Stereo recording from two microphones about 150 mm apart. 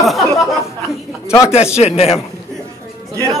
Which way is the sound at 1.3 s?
20° left (ahead or behind).